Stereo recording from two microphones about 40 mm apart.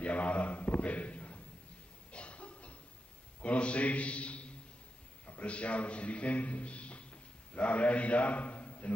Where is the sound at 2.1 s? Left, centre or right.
Left.